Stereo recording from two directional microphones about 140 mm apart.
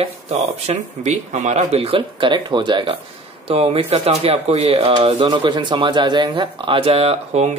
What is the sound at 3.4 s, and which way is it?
Speech, 45° right (ahead or behind).